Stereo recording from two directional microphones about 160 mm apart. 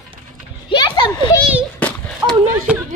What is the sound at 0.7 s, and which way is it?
Children playing, 30° left (ahead or behind).